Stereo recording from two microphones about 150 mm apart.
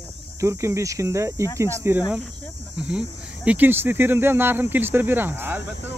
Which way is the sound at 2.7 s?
5° right (ahead or behind).